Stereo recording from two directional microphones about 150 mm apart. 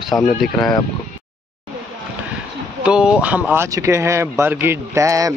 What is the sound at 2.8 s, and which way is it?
Speech, 5° right (ahead or behind).